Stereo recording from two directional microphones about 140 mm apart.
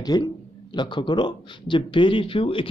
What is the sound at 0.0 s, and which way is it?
A man's voice, 30° left (ahead or behind).